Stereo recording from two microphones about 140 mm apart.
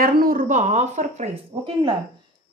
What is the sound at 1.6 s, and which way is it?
Speech, 40° right (ahead or behind).